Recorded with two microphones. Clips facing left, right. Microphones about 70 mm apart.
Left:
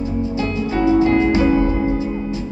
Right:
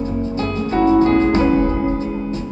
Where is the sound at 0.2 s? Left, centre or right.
Right.